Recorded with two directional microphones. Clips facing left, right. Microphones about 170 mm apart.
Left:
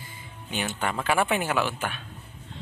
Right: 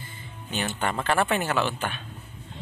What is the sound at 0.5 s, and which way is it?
A man's voice, 10° left (ahead or behind).